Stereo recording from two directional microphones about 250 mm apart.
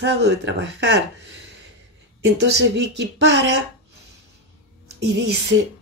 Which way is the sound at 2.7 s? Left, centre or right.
Right.